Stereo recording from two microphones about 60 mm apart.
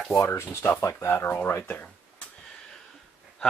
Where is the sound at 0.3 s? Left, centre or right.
Left.